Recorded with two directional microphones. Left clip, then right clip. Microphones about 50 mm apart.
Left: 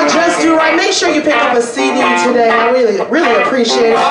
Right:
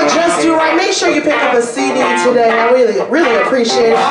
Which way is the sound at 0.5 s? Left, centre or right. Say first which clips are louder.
Left 1 dB; centre.